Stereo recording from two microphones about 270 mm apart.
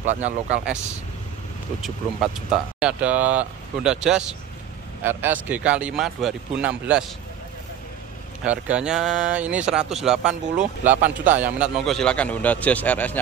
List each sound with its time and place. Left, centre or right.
0.0 s speech: right
1.8 s speech: centre
8.5 s speech: centre